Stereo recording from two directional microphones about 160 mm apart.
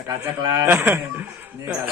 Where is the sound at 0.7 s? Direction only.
15° right (ahead or behind).